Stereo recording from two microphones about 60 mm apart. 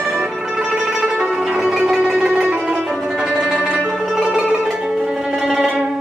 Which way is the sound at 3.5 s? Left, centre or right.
Right.